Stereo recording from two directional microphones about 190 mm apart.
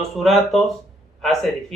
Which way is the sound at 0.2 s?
Centre (ahead or behind).